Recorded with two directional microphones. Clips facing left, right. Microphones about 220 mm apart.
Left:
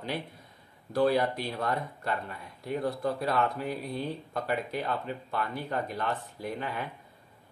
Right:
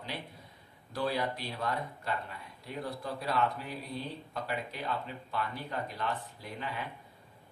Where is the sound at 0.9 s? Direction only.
50° left (ahead or behind).